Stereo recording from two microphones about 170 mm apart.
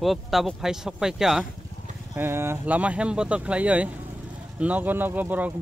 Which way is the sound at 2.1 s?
15° right (ahead or behind).